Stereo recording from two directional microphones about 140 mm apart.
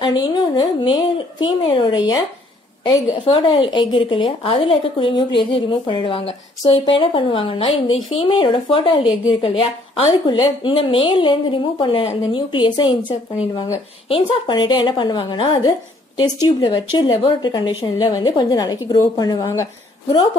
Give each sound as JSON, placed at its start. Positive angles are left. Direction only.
{"t": 0.0, "sound": "speech", "side_deg": 30}
{"t": 14.0, "sound": "speech", "side_deg": 35}